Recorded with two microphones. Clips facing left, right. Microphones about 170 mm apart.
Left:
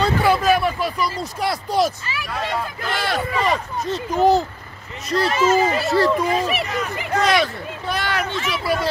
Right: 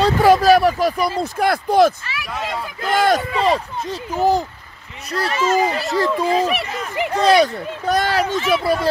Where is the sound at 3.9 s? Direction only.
10° right (ahead or behind).